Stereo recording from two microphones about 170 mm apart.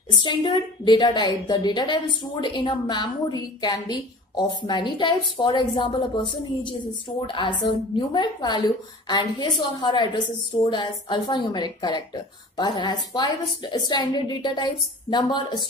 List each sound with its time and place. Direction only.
0.1 s a woman's voice: 30° left (ahead or behind)